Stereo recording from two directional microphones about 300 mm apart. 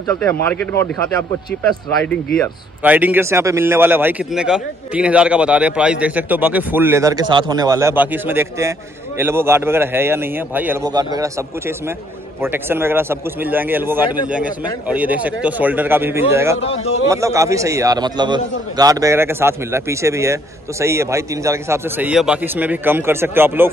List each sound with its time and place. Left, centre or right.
0.0 s a man's voice: centre
16.5 s speech: centre
17.1 s a man's voice: centre